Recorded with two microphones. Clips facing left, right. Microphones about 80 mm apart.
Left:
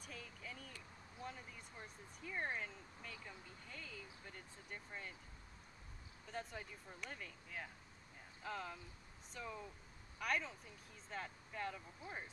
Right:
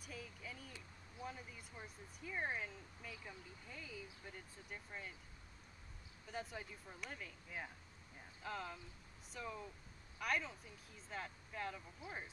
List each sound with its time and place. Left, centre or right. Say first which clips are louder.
0.0 s a sound: right 1 dB; centre
1.2 s speech: right 1 dB; centre
6.3 s speech: right 1 dB; centre
7.4 s speech: right 2 dB; centre
8.4 s speech: even; centre